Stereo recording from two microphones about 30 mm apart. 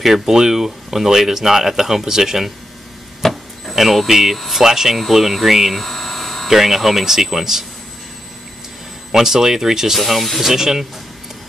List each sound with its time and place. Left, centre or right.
0.0 s speech: centre
3.2 s a sound: centre
3.7 s speech: centre
5.8 s a sound: centre
6.5 s speech: centre
9.1 s speech: centre
9.9 s speech: centre
10.4 s speech: centre